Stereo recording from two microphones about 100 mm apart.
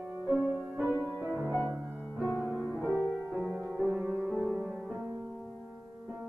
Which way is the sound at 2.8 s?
25° left (ahead or behind).